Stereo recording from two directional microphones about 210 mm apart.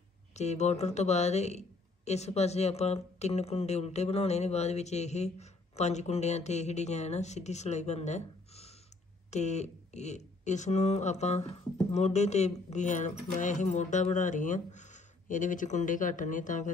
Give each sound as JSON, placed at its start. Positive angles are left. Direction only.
{"t": 0.4, "sound": "speech", "side_deg": 30}